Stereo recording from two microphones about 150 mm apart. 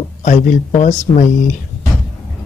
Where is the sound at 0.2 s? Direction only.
55° left (ahead or behind).